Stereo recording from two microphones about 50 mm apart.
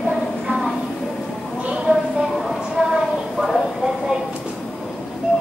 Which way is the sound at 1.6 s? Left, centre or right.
Centre.